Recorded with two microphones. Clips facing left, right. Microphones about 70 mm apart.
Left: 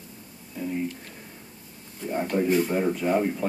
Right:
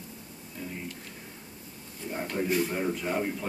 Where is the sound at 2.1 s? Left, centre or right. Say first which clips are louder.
Left 6 dB; centre.